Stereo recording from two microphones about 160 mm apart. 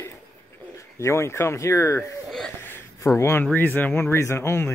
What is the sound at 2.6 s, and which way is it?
Speech, 15° left (ahead or behind).